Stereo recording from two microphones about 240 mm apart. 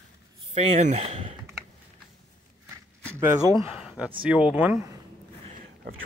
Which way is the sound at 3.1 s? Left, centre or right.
Centre.